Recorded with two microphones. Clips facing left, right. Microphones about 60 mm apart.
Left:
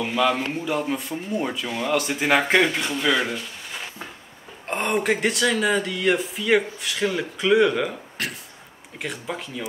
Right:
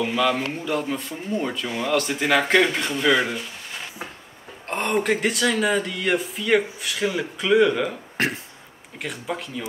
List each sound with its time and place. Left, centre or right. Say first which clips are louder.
0.0 s speech: even; centre
2.7 s speech: right 2 dB; centre
8.2 s speech: right 7 dB; right
8.9 s speech: right 1 dB; centre